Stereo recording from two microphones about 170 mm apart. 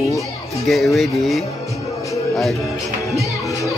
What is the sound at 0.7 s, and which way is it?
Speech, centre (ahead or behind).